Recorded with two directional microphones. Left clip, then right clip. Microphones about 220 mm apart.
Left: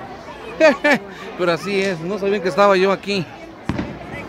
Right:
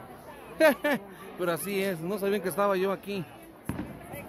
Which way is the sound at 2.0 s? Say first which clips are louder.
Left 9 dB; 20° right (ahead or behind).